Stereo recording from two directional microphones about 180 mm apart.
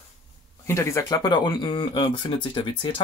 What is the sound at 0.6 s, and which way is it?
Speech, 15° left (ahead or behind).